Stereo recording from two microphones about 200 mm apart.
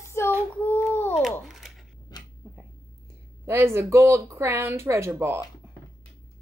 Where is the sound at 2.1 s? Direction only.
20° left (ahead or behind).